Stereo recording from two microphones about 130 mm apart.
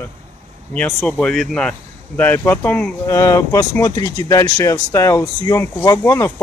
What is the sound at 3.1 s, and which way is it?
Speech, 25° left (ahead or behind).